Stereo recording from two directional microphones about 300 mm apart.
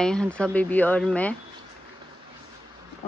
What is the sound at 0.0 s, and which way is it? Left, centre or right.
Speech, centre.